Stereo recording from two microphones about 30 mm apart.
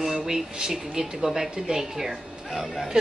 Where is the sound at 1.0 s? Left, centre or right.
Right.